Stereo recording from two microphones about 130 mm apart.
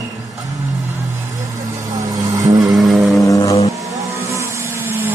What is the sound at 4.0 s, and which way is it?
Vehicle, 25° right (ahead or behind).